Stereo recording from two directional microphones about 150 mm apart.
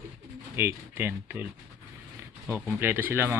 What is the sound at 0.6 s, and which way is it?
Speech, 15° right (ahead or behind).